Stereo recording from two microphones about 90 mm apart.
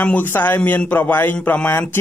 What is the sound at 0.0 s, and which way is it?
A man's voice, 15° left (ahead or behind).